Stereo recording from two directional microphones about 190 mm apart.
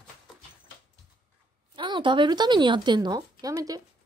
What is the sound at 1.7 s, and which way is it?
A woman's voice, 25° right (ahead or behind).